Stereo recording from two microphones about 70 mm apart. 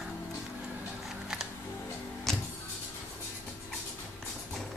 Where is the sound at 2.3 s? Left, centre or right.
Centre.